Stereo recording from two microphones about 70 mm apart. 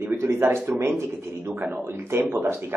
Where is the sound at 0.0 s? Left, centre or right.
Right.